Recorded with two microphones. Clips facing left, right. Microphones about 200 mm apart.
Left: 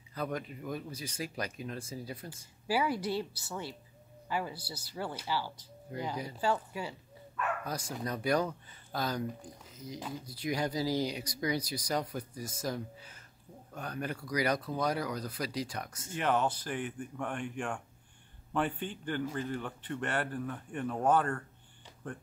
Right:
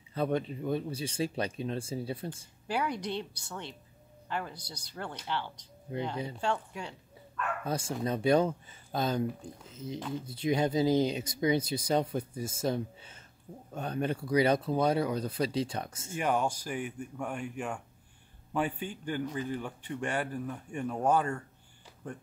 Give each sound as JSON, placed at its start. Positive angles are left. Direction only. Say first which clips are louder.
{"t": 0.1, "sound": "speech", "louder": "right 6 dB", "side_deg": -25}
{"t": 2.2, "sound": "speech", "louder": "even", "side_deg": 5}
{"t": 5.9, "sound": "speech", "louder": "right 4 dB", "side_deg": -25}
{"t": 6.3, "sound": "speech", "louder": "left 1 dB", "side_deg": 5}
{"t": 7.6, "sound": "speech", "louder": "right 5 dB", "side_deg": -25}
{"t": 16.2, "sound": "speech", "louder": "right 1 dB", "side_deg": -10}